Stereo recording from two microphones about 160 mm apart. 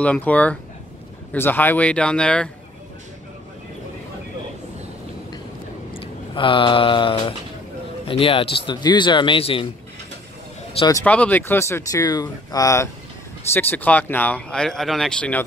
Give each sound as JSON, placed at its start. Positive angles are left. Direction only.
{"t": 0.0, "sound": "speech", "side_deg": 10}
{"t": 5.9, "sound": "speech", "side_deg": 30}
{"t": 11.1, "sound": "speech", "side_deg": 10}